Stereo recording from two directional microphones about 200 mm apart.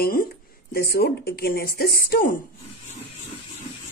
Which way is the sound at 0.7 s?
50° left (ahead or behind).